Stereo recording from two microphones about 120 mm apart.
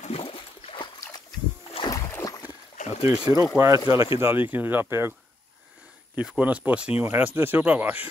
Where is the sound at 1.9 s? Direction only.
25° left (ahead or behind).